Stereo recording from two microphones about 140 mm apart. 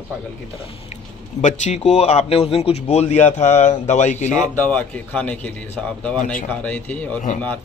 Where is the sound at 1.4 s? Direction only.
60° left (ahead or behind).